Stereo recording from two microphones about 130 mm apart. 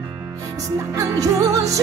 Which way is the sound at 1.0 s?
25° right (ahead or behind).